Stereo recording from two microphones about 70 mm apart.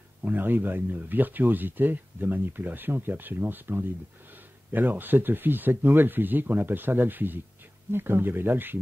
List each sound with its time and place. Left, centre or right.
0.2 s speech: right